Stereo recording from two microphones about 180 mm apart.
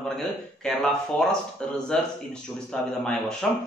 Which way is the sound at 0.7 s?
5° left (ahead or behind).